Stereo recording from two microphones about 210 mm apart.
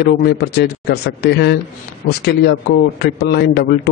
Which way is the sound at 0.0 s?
50° left (ahead or behind).